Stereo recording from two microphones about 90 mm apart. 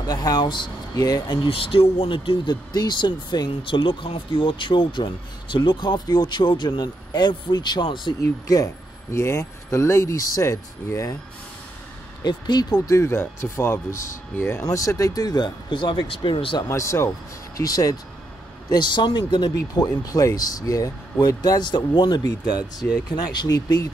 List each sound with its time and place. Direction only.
0.0 s speech: 45° left (ahead or behind)
1.5 s speech: 90° left; by 2.5 s 70° left (ahead or behind)
2.7 s speech: 50° left (ahead or behind)
8.2 s speech: 40° left (ahead or behind)
9.1 s speech: 30° left (ahead or behind)
12.2 s speech: 50° left (ahead or behind)
12.9 s speech: 30° left (ahead or behind); by 16.6 s 75° left (ahead or behind)
16.6 s speech: 35° left (ahead or behind)
18.7 s speech: 55° left (ahead or behind)
19.5 s speech: 40° left (ahead or behind)